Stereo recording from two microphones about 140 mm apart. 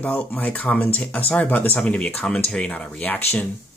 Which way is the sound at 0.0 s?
10° left (ahead or behind).